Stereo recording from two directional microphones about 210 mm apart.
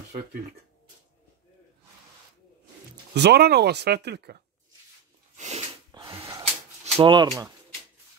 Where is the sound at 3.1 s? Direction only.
50° right (ahead or behind).